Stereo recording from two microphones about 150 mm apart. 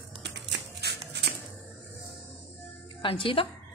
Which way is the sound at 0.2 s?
90° right.